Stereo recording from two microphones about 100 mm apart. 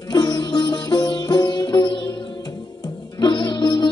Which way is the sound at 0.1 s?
45° left (ahead or behind).